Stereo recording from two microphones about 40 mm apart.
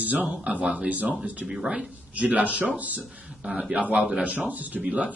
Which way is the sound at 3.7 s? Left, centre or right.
Right.